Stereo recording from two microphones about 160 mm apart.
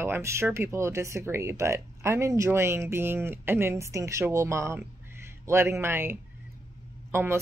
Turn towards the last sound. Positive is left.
turn(degrees=-15)  # may be behind; listen again after turning